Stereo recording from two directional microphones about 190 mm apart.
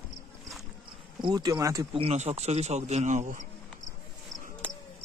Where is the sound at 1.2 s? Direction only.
20° right (ahead or behind).